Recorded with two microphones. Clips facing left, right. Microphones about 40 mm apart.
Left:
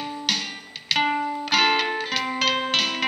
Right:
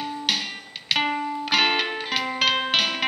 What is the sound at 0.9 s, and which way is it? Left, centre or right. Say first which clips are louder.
Music: left 2 dB; centre.